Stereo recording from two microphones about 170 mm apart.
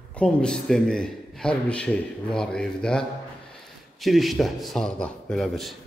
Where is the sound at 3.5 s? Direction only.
Centre (ahead or behind).